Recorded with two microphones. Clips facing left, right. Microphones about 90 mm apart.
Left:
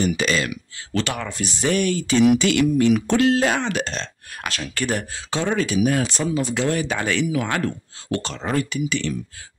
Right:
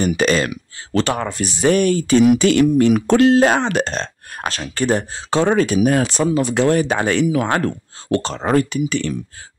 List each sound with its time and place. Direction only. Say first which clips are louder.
0.0 s speech: right 5 dB; 45° right (ahead or behind)
1.3 s speech: right 5 dB; 50° right (ahead or behind)